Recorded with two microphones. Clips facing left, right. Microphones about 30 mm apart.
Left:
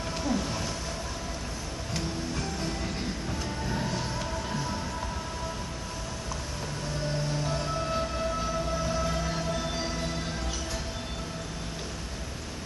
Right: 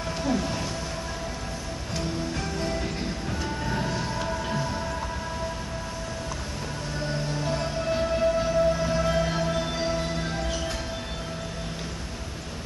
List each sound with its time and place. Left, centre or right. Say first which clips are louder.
0.2 s a sound: right 3 dB; centre
2.3 s music: right 4 dB; centre
7.4 s music: right 3 dB; centre